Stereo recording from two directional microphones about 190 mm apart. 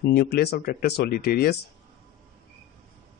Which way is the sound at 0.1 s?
55° left (ahead or behind).